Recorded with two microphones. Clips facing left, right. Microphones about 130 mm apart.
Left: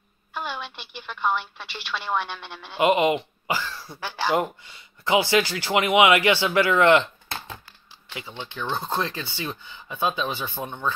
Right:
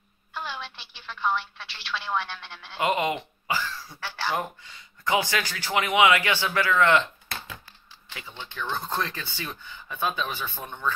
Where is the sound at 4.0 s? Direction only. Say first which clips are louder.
Left 6 dB; 15° left (ahead or behind).